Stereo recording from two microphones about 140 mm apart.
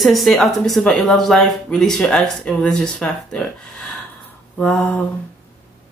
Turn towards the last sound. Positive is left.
turn(degrees=5)  # may be behind; listen again after turning